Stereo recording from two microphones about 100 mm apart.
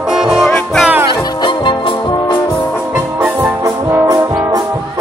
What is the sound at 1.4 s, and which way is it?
Music, 50° left (ahead or behind).